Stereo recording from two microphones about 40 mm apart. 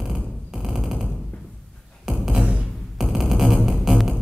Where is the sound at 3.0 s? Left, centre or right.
Centre.